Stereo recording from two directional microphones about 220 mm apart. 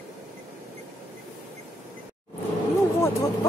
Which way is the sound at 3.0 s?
15° left (ahead or behind).